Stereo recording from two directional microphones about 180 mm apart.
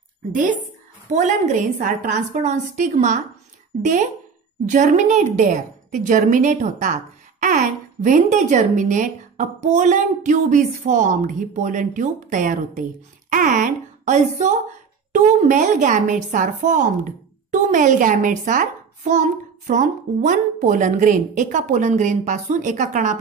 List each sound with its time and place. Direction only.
0.3 s a woman's voice: 45° right (ahead or behind)